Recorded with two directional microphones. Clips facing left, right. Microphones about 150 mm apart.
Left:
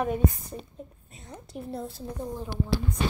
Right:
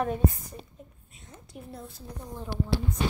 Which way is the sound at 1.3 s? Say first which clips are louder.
Left 7 dB; 35° left (ahead or behind).